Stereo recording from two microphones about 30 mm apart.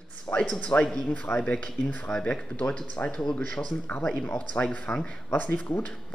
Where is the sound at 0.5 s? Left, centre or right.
Left.